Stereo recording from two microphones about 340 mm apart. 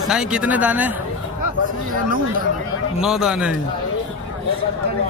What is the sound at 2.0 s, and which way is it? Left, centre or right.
Speech, right.